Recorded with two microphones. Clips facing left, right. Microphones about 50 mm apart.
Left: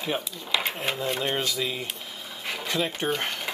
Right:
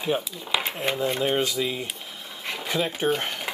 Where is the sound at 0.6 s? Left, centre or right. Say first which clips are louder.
Right 2 dB; centre.